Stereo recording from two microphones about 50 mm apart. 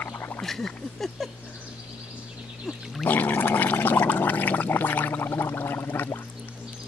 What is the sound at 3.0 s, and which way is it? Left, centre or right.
Gargling, left.